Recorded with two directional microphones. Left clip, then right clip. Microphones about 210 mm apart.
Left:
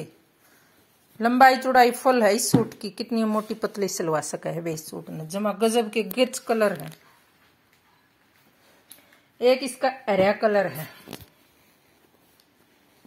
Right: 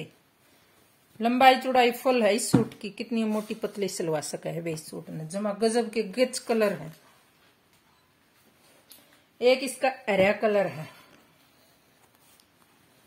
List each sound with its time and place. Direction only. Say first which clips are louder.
1.6 s speech: left 5 dB; 10° left (ahead or behind)
4.9 s speech: left 3 dB; 20° left (ahead or behind)
9.4 s speech: left 2 dB; 25° left (ahead or behind)